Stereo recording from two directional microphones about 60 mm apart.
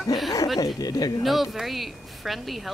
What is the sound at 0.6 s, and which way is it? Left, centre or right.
Speech, left.